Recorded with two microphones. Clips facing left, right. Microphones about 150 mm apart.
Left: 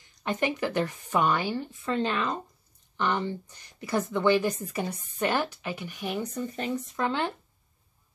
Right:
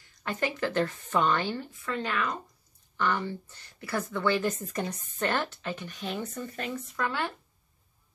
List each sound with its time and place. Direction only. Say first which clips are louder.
0.0 s a woman's voice: left 3 dB; 20° left (ahead or behind)